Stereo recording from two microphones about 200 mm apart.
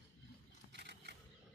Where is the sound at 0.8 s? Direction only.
55° right (ahead or behind).